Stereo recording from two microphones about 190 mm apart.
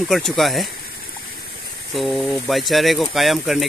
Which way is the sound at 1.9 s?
Centre (ahead or behind).